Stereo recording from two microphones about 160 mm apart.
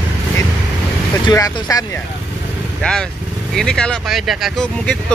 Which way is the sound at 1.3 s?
25° left (ahead or behind).